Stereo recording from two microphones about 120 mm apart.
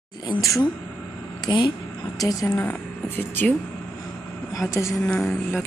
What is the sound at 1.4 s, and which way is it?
Speech, 40° left (ahead or behind).